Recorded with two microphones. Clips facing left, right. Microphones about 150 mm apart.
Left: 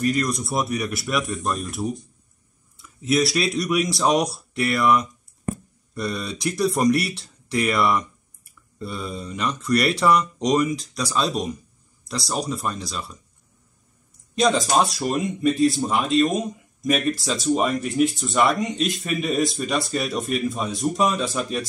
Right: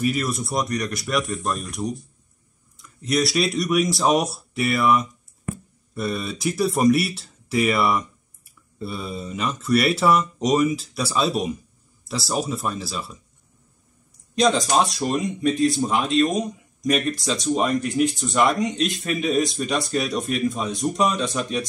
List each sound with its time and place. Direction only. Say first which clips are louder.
0.0 s speech: left 1 dB; 5° right (ahead or behind)
5.5 s a sound: left 3 dB; 35° left (ahead or behind)
5.9 s speech: right 1 dB; centre (ahead or behind)
14.3 s speech: even; centre (ahead or behind)